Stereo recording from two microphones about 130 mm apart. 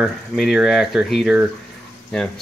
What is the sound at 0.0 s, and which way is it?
Speech, centre (ahead or behind).